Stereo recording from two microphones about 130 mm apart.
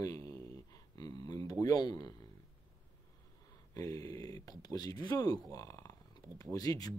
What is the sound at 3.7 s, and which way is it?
Speech, 25° left (ahead or behind).